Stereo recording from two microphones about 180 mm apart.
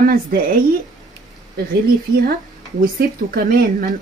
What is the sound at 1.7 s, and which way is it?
Speech, 55° right (ahead or behind).